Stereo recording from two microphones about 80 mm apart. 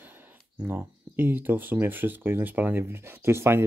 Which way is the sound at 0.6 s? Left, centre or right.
Right.